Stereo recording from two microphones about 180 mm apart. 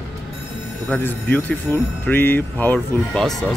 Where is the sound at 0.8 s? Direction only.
10° left (ahead or behind).